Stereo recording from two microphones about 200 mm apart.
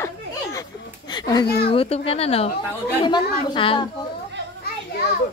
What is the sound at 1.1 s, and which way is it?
Speech, 20° left (ahead or behind).